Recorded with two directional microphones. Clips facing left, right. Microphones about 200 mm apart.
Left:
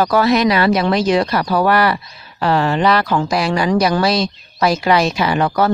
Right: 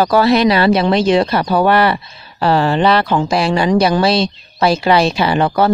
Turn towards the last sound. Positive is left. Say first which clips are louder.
# right 2 dB
turn(degrees=-30)  # may be behind; listen again after turning